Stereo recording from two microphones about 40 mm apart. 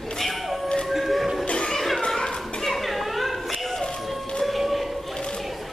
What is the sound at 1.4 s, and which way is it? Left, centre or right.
Music, left.